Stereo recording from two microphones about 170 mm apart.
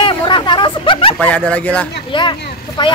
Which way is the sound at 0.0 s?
30° left (ahead or behind).